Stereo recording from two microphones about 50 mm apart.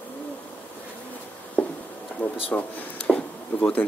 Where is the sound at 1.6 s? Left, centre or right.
Left.